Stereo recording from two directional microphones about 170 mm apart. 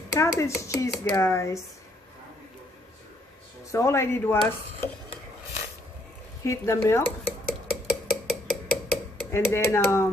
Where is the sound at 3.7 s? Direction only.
15° left (ahead or behind).